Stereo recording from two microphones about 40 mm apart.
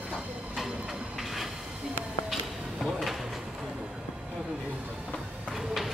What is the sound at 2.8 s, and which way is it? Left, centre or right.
Drawer open or close, centre.